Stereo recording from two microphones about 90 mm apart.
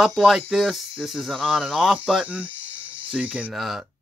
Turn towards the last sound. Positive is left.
turn(degrees=-15)  # may be behind; listen again after turning